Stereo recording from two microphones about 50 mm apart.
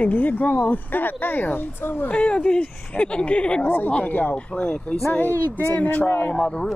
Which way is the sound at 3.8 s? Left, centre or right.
Left.